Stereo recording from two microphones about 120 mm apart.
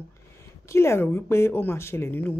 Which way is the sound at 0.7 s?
20° left (ahead or behind).